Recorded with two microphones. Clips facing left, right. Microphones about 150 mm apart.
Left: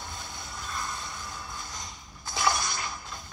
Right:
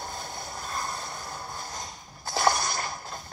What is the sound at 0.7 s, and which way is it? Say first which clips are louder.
Vehicle: right 2 dB; 45° right (ahead or behind).